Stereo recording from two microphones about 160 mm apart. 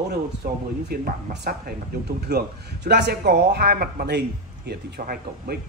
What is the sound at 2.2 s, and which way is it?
A man's voice, 90° right.